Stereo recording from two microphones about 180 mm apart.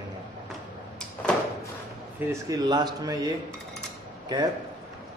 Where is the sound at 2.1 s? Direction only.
15° right (ahead or behind).